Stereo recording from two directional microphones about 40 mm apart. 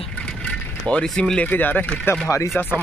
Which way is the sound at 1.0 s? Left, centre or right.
Centre.